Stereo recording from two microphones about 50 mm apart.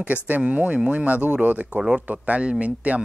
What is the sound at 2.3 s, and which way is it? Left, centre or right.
Speech, right.